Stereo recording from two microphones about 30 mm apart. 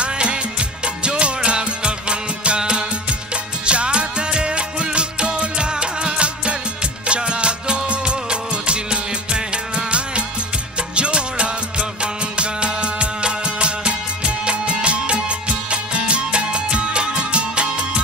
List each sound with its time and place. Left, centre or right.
0.0 s music: right